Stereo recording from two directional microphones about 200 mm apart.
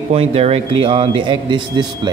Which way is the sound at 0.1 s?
30° right (ahead or behind).